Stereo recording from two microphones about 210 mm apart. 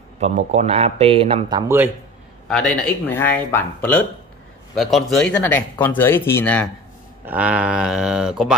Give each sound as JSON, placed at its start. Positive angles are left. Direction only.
{"t": 0.2, "sound": "speech", "side_deg": -30}
{"t": 2.4, "sound": "speech", "side_deg": 5}
{"t": 7.2, "sound": "speech", "side_deg": -5}